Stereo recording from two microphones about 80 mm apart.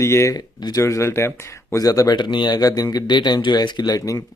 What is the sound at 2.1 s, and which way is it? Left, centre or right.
Speech, left.